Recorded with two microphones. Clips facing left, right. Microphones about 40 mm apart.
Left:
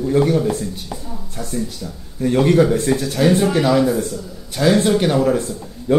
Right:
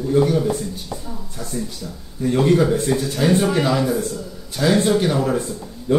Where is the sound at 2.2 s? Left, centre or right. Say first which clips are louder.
Left 2 dB; left.